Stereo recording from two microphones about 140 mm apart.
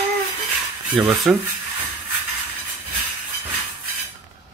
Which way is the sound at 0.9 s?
Centre (ahead or behind).